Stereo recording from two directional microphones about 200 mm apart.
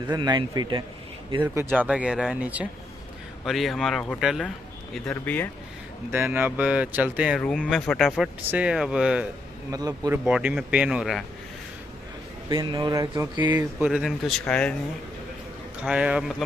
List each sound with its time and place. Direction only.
0.0 s speech: 20° right (ahead or behind); by 5.5 s 10° left (ahead or behind)
6.1 s speech: 10° right (ahead or behind)
9.7 s speech: 20° right (ahead or behind)
10.2 s speech: 5° right (ahead or behind)
12.4 s speech: 25° right (ahead or behind)
13.6 s speech: 5° right (ahead or behind)
15.8 s speech: 5° right (ahead or behind)